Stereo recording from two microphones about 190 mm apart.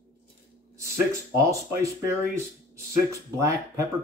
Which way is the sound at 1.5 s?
15° right (ahead or behind).